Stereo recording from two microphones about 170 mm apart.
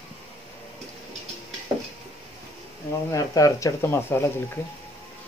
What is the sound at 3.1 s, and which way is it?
Speech, 20° left (ahead or behind).